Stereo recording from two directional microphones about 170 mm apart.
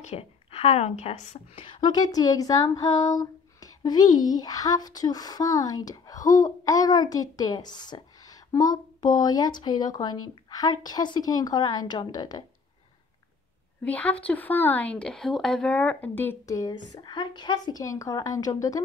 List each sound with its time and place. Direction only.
0.1 s a woman's voice: 35° left (ahead or behind)
13.8 s a woman's voice: 10° left (ahead or behind)